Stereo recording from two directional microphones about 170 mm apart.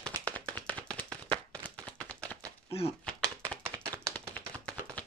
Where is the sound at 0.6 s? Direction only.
10° left (ahead or behind).